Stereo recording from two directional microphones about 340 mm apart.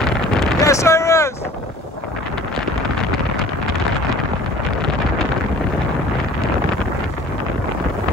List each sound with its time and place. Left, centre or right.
0.0 s wind noise: centre